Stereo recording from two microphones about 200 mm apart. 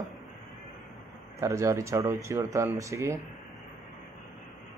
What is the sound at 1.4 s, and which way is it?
Speech, 15° right (ahead or behind).